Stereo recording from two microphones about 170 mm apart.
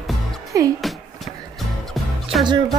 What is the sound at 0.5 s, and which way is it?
Speech, 20° right (ahead or behind).